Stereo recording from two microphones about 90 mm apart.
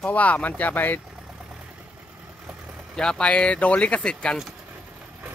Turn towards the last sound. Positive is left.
turn(degrees=10)  # may be behind; listen again after turning